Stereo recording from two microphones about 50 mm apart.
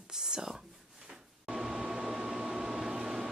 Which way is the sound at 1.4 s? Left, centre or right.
Centre.